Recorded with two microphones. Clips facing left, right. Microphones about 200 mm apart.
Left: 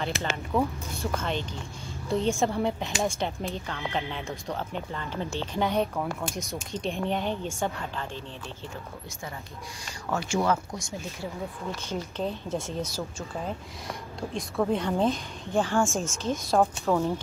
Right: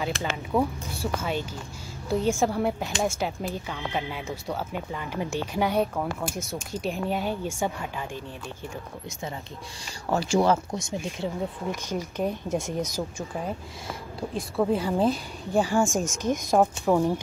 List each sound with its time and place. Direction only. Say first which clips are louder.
0.0 s speech: right 1 dB; centre (ahead or behind)
10.0 s speech: right 4 dB; 35° right (ahead or behind)
11.7 s speech: right 2 dB; 15° right (ahead or behind)
13.5 s speech: right 1 dB; centre (ahead or behind)